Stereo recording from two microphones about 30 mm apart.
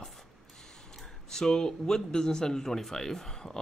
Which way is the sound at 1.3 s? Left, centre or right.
Centre.